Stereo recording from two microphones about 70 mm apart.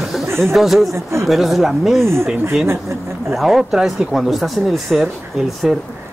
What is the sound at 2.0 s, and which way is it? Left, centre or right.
Speech, right.